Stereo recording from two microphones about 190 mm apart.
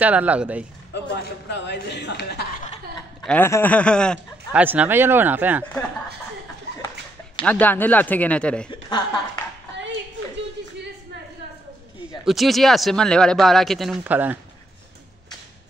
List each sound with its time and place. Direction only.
0.0 s speech: 10° right (ahead or behind)
1.1 s a woman's voice: 65° left (ahead or behind)
3.3 s speech: 10° left (ahead or behind)
4.5 s speech: 5° right (ahead or behind)
7.4 s speech: 10° left (ahead or behind)
12.3 s speech: centre (ahead or behind)